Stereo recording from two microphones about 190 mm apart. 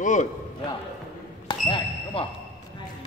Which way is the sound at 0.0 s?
40° left (ahead or behind).